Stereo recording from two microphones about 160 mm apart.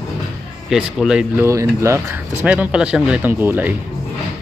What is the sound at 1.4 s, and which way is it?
Speech, 20° right (ahead or behind).